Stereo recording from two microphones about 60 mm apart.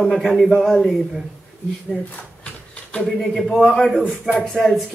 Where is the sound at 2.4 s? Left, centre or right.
Centre.